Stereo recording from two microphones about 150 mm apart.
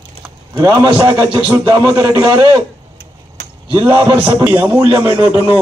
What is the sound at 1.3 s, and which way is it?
A man's voice, 35° right (ahead or behind).